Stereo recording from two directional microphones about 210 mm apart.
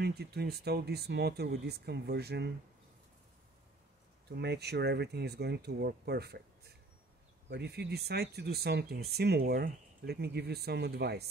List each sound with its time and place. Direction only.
0.0 s speech: 50° right (ahead or behind)
4.3 s speech: 50° right (ahead or behind)
7.4 s speech: 50° right (ahead or behind)